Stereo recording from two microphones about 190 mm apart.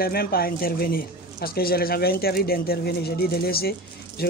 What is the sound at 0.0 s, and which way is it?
Speech, 50° left (ahead or behind).